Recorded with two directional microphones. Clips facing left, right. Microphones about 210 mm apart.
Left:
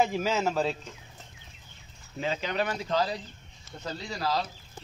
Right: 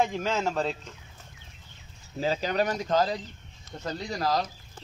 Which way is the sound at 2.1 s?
35° right (ahead or behind).